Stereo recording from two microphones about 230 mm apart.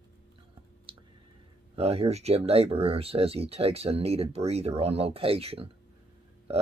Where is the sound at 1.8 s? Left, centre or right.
Right.